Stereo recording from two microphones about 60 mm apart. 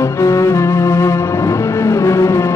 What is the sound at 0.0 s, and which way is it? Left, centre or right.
Music, left.